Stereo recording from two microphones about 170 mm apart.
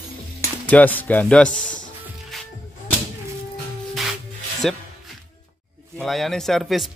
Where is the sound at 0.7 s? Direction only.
10° left (ahead or behind).